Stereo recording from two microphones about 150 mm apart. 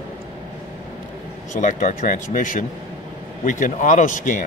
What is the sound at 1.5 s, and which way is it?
Speech, 55° left (ahead or behind).